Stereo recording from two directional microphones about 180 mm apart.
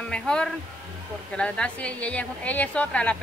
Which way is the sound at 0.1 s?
5° left (ahead or behind).